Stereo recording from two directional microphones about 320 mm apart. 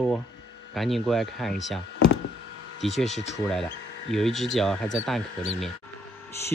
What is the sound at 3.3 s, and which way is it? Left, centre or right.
Speech, centre.